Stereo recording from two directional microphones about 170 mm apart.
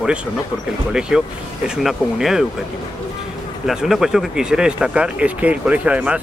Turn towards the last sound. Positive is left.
turn(degrees=-10)  # may be behind; listen again after turning